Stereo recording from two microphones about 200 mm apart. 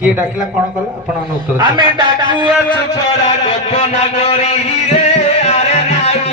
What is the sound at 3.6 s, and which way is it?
Music, 30° left (ahead or behind).